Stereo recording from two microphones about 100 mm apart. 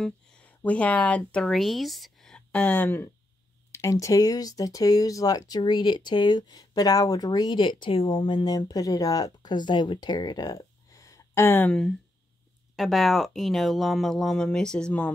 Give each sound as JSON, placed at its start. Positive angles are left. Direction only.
{"t": 0.0, "sound": "speech", "side_deg": 15}
{"t": 3.7, "sound": "speech", "side_deg": 30}
{"t": 8.5, "sound": "speech", "side_deg": 40}
{"t": 12.7, "sound": "speech", "side_deg": 0}